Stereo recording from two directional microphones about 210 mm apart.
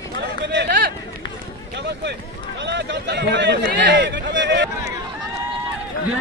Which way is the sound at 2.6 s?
55° right (ahead or behind).